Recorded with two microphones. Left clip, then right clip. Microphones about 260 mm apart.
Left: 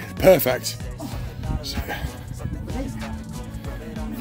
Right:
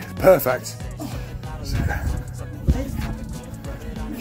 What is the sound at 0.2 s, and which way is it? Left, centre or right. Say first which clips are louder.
Speech: even; left.